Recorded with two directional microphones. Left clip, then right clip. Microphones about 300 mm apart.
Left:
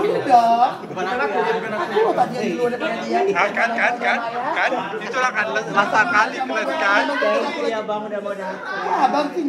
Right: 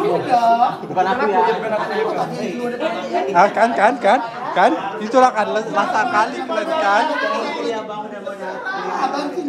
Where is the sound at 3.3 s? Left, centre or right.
Centre.